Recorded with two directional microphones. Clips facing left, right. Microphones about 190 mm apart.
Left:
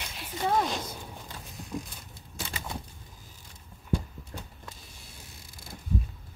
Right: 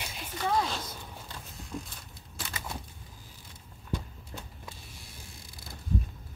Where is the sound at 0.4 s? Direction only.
20° left (ahead or behind).